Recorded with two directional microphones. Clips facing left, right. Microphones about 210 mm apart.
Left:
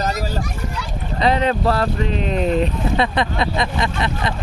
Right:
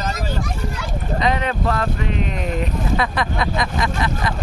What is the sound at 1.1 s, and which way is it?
Speech, 30° left (ahead or behind).